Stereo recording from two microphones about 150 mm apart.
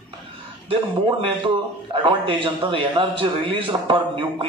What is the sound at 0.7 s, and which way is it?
A man's voice, 35° right (ahead or behind).